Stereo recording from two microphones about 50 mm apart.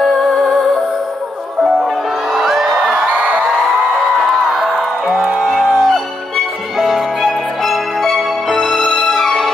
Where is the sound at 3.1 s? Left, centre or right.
Right.